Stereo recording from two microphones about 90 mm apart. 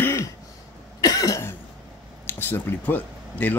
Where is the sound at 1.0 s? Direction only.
40° left (ahead or behind).